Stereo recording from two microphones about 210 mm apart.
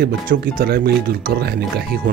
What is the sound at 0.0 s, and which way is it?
Speech, 45° right (ahead or behind).